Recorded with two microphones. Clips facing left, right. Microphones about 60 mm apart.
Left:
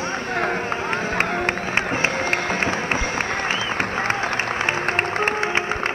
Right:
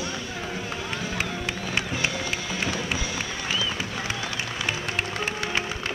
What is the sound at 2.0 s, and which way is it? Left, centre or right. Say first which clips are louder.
Music: left 7 dB; left.